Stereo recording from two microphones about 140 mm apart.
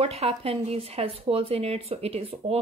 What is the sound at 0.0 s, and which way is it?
Speech, 45° right (ahead or behind).